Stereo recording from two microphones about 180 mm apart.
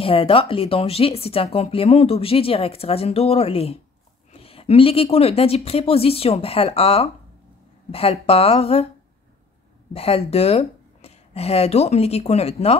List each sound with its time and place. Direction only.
0.0 s speech: 30° left (ahead or behind)
9.9 s speech: 35° left (ahead or behind)